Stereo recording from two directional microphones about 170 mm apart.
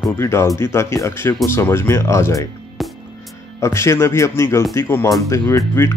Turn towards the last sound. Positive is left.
turn(degrees=15)  # may be behind; listen again after turning